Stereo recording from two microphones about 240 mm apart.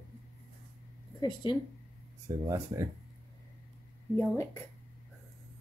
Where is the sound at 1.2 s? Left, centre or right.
Centre.